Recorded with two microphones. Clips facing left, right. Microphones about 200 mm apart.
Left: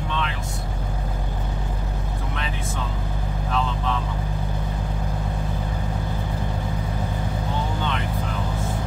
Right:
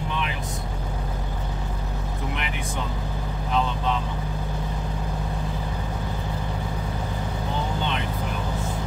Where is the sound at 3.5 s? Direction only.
20° right (ahead or behind).